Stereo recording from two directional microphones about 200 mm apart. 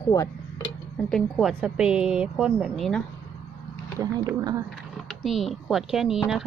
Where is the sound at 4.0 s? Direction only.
15° right (ahead or behind).